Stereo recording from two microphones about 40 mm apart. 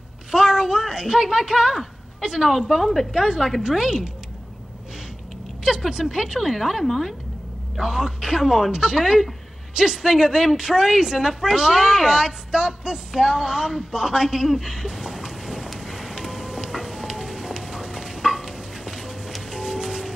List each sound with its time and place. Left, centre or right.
0.3 s speech: centre
2.8 s a woman's voice: centre
3.2 s a woman's voice: centre
5.9 s a woman's voice: centre
7.8 s a woman's voice: centre
8.7 s a woman's voice: centre
15.8 s music: centre